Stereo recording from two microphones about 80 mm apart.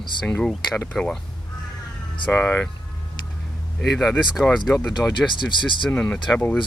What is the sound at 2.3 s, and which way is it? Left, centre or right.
Speech, centre.